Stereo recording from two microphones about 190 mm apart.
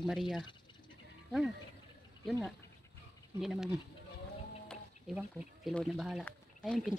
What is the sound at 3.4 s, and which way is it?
Speech, centre (ahead or behind).